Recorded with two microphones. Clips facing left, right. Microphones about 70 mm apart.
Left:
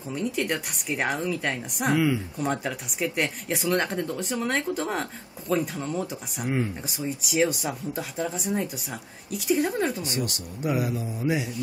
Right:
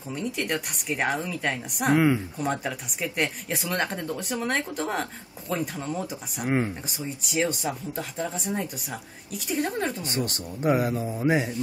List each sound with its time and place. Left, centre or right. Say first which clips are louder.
0.1 s speech: left 1 dB; centre
6.4 s speech: right 2 dB; right
6.9 s speech: left 3 dB; centre
10.0 s speech: right 1 dB; right